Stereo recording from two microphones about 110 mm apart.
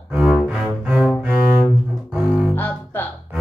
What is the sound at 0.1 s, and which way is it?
Cello, 10° right (ahead or behind).